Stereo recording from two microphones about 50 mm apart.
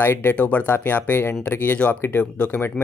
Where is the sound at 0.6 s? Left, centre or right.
Left.